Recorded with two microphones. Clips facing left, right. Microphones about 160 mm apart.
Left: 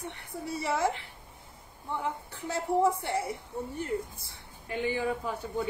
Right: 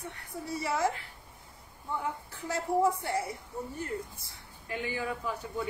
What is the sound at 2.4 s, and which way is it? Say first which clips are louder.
Speech: left 1 dB; 25° left (ahead or behind).